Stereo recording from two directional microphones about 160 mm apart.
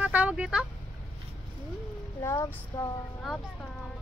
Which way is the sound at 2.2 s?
20° left (ahead or behind).